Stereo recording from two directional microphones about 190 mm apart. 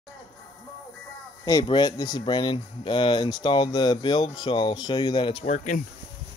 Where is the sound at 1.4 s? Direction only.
20° left (ahead or behind); by 5.8 s 35° left (ahead or behind).